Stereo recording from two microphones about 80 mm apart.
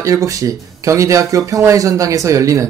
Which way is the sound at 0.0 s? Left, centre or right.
Right.